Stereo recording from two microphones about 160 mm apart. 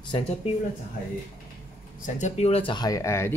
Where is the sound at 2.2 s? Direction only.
45° left (ahead or behind); by 3.4 s 15° left (ahead or behind).